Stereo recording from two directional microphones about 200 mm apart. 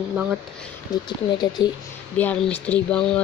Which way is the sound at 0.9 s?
20° left (ahead or behind).